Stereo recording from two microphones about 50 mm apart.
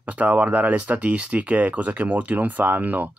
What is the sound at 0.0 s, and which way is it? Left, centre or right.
Speech, right.